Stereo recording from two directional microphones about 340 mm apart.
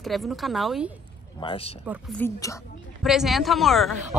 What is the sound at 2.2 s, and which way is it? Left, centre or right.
Speech, centre.